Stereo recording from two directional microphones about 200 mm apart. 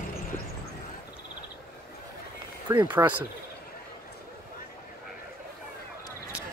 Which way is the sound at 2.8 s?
20° right (ahead or behind).